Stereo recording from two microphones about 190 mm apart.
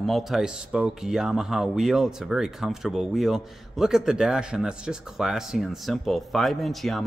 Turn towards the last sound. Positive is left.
turn(degrees=0)  # may be behind; listen again after turning